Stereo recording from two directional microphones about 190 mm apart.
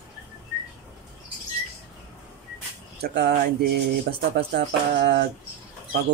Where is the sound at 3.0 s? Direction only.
55° right (ahead or behind).